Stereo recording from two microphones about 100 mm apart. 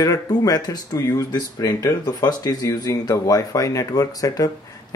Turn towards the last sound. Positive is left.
turn(degrees=35)  # may be behind; listen again after turning